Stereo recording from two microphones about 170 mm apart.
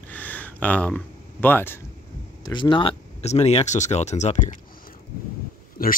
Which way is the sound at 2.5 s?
30° left (ahead or behind).